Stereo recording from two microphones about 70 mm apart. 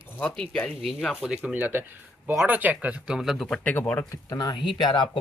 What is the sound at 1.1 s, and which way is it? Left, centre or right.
Speech, centre.